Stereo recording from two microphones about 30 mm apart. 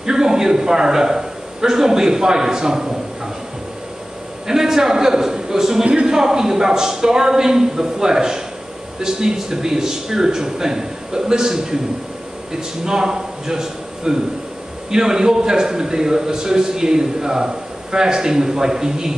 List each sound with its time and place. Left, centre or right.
0.0 s a man's voice: right
4.5 s a man's voice: centre